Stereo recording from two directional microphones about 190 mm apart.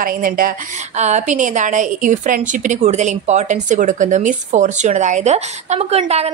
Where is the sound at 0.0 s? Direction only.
50° right (ahead or behind).